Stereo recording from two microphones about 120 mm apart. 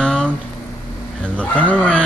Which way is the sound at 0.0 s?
5° left (ahead or behind).